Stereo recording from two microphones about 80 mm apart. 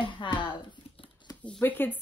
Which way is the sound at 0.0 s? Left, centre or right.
Left.